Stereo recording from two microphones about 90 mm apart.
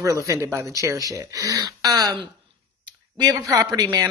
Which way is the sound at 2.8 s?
55° right (ahead or behind).